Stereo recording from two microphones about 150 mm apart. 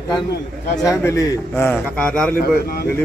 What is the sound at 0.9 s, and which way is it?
A man's voice, 20° left (ahead or behind).